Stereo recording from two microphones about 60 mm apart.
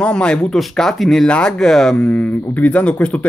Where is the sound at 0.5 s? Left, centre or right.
Centre.